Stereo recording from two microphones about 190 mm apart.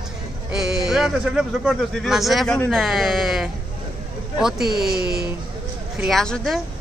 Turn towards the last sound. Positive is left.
turn(degrees=0)  # may be behind; listen again after turning